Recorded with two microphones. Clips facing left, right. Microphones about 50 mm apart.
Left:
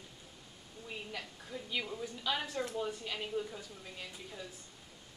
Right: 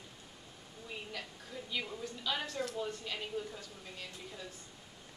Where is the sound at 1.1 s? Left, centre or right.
Centre.